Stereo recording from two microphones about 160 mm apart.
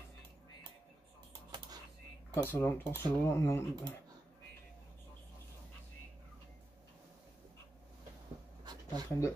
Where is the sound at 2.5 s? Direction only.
15° left (ahead or behind).